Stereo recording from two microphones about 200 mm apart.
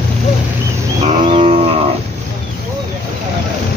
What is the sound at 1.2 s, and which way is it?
Livestock, 35° right (ahead or behind).